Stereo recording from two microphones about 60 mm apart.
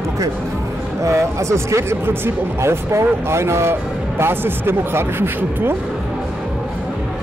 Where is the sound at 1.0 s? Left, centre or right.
Right.